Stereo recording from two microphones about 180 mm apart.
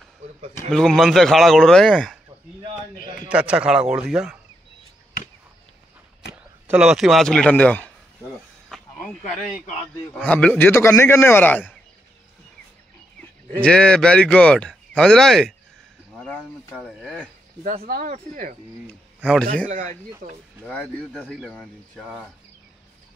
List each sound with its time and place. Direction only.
0.7 s speech: centre (ahead or behind)
3.3 s speech: 5° right (ahead or behind)
6.7 s speech: 5° right (ahead or behind)
8.6 s a sound: centre (ahead or behind)
10.1 s speech: 5° left (ahead or behind)
13.6 s speech: 5° left (ahead or behind)
16.7 s speech: centre (ahead or behind)
17.8 s speech: 50° right (ahead or behind)
19.7 s speech: 45° right (ahead or behind)
21.5 s speech: centre (ahead or behind)